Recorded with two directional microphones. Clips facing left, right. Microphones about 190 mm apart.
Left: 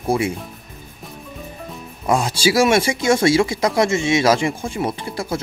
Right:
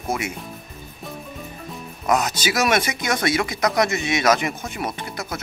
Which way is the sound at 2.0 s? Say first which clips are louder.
Left 3 dB; 30° left (ahead or behind).